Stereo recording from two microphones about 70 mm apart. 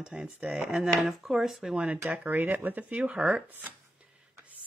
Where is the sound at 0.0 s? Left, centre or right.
Centre.